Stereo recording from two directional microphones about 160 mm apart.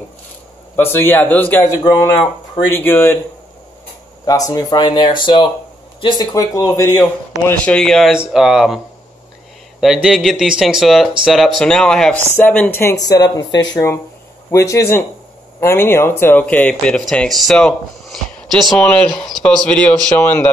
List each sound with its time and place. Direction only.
0.7 s speech: 15° left (ahead or behind)
4.3 s speech: 20° left (ahead or behind); by 8.8 s centre (ahead or behind)
10.0 s speech: centre (ahead or behind); by 13.5 s 25° left (ahead or behind)
14.5 s speech: 20° left (ahead or behind)